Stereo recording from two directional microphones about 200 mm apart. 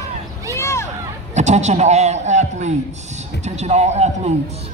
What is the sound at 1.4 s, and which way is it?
A man's voice, 35° right (ahead or behind).